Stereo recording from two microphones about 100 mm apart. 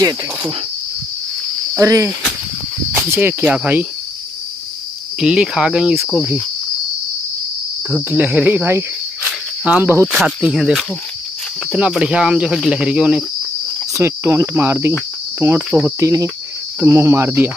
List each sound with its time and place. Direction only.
1.8 s speech: 30° right (ahead or behind)
2.9 s cricket: 25° right (ahead or behind)
5.2 s cricket: 10° right (ahead or behind)
5.9 s speech: 5° right (ahead or behind)
8.1 s cricket: 15° right (ahead or behind)
10.1 s speech: 5° right (ahead or behind)
11.9 s cricket: 10° right (ahead or behind)
13.9 s cricket: 30° right (ahead or behind)